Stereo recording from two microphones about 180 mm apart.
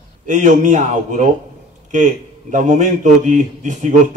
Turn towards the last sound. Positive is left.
turn(degrees=-45)  # may be behind; listen again after turning